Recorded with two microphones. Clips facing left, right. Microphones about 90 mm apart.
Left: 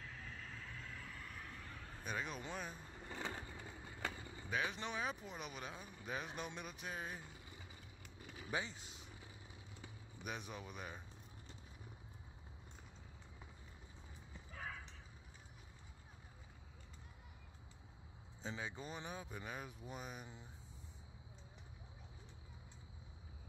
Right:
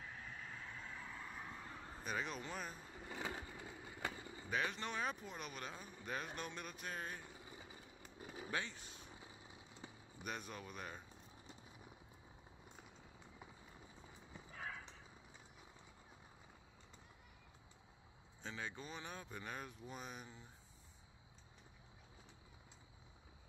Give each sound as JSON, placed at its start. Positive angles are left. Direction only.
{"t": 0.0, "sound": "vehicle", "side_deg": -10}
{"t": 2.0, "sound": "speech", "side_deg": 0}
{"t": 8.5, "sound": "speech", "side_deg": 15}
{"t": 9.0, "sound": "vehicle", "side_deg": -20}
{"t": 10.2, "sound": "speech", "side_deg": 5}
{"t": 14.5, "sound": "clip-clop", "side_deg": 0}
{"t": 18.4, "sound": "speech", "side_deg": 15}